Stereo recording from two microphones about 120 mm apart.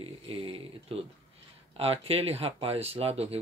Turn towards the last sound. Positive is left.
turn(degrees=-55)  # may be behind; listen again after turning